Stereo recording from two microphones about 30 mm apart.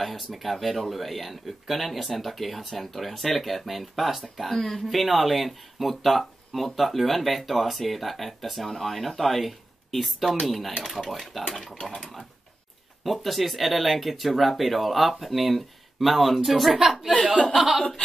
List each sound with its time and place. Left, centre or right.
0.0 s speech: centre
11.8 s sewing machine: left
13.0 s speech: centre